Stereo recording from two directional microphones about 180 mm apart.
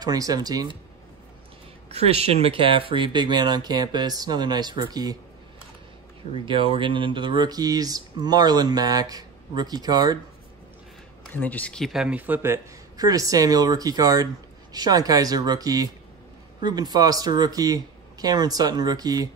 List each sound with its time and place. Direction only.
0.0 s speech: 20° right (ahead or behind)
1.9 s speech: 35° right (ahead or behind)
6.3 s speech: 30° right (ahead or behind)
11.3 s speech: 10° left (ahead or behind); by 19.2 s 20° right (ahead or behind)